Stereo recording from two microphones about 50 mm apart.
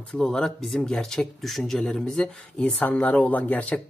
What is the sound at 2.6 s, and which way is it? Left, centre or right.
Speech, left.